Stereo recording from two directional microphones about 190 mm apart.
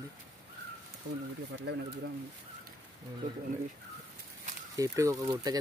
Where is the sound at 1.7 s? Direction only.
60° right (ahead or behind).